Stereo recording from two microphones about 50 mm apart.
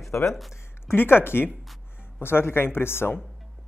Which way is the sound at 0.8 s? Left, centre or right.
Left.